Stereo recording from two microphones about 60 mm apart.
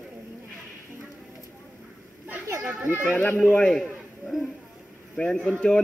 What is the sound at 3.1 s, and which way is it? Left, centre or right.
Speech, left.